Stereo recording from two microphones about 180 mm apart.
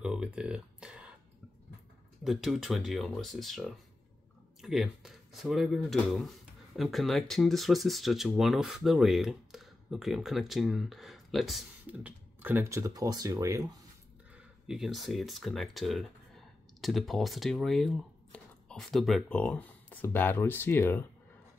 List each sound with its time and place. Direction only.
0.0 s speech: 5° right (ahead or behind)
2.2 s speech: centre (ahead or behind)
12.4 s speech: 10° right (ahead or behind)
14.7 s speech: centre (ahead or behind)